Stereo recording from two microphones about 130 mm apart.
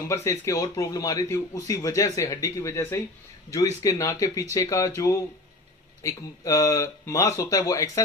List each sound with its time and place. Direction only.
0.0 s a man's voice: 25° left (ahead or behind)